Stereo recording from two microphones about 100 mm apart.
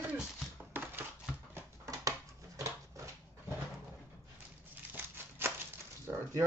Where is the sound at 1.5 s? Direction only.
25° right (ahead or behind).